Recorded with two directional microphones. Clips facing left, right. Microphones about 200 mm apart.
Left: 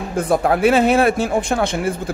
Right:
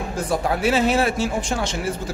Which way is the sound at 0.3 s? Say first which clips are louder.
Left 6 dB; 55° left (ahead or behind).